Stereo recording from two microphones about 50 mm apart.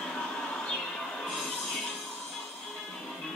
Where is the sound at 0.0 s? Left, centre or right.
Centre.